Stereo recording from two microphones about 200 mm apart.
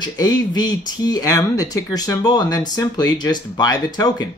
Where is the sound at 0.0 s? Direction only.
20° left (ahead or behind).